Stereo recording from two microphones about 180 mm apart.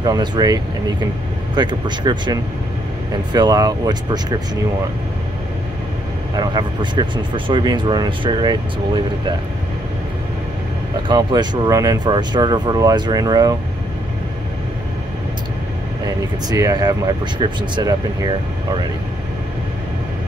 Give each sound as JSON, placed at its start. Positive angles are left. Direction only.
{"t": 0.0, "sound": "speech", "side_deg": -25}
{"t": 3.3, "sound": "speech", "side_deg": -20}
{"t": 6.3, "sound": "speech", "side_deg": -25}
{"t": 11.1, "sound": "speech", "side_deg": -25}
{"t": 16.4, "sound": "speech", "side_deg": -20}